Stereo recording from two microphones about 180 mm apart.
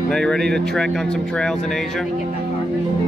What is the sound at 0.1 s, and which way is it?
Speech, 5° left (ahead or behind).